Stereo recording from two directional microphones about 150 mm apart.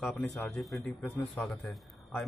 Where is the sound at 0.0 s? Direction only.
10° left (ahead or behind).